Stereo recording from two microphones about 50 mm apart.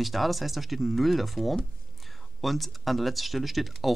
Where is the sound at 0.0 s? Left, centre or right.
Centre.